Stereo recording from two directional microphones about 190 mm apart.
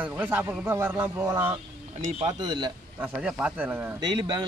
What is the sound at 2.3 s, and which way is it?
Speech, 25° right (ahead or behind).